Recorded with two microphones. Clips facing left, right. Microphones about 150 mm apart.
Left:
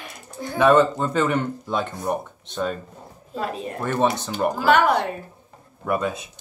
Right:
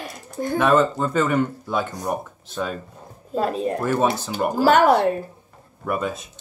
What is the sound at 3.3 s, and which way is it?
Speech, 40° right (ahead or behind).